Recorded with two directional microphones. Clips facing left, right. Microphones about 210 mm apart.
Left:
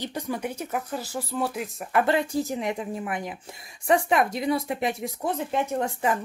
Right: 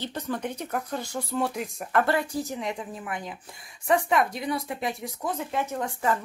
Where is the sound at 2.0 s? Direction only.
25° left (ahead or behind).